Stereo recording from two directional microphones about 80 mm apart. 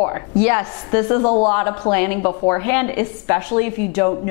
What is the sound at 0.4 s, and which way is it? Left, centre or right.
A woman's voice, centre.